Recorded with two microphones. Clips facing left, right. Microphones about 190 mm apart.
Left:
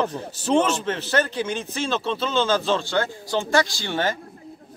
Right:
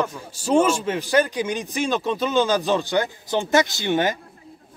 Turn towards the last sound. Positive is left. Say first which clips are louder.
# right 4 dB
turn(degrees=-15)  # may be behind; listen again after turning